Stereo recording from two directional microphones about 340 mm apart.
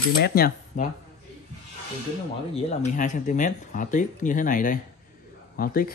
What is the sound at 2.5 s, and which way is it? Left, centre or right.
Speech, left.